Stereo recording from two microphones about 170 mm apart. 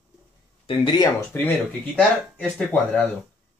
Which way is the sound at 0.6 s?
30° left (ahead or behind).